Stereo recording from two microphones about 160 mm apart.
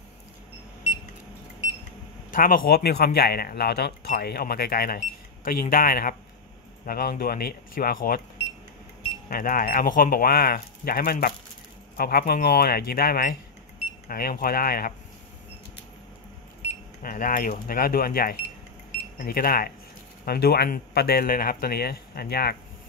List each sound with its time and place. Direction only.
2.3 s speech: 60° left (ahead or behind)
9.3 s speech: 60° left (ahead or behind)
17.0 s speech: 60° left (ahead or behind); by 22.6 s 80° left